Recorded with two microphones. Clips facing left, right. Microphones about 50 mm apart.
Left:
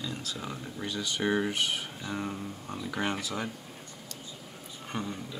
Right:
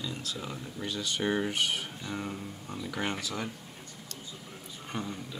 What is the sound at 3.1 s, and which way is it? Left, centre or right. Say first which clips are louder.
Speech: left 2 dB; left.